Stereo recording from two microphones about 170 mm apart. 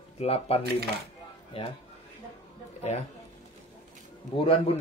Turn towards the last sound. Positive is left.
turn(degrees=30)  # may be behind; listen again after turning